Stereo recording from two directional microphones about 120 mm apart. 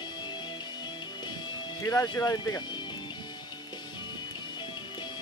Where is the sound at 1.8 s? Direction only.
30° left (ahead or behind).